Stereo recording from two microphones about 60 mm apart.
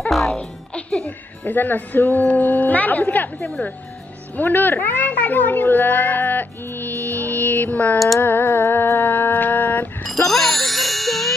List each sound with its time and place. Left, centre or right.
0.1 s music: centre
0.4 s music: centre
1.4 s a woman's voice: left
7.1 s music: left
8.2 s a sound: left
10.2 s music: centre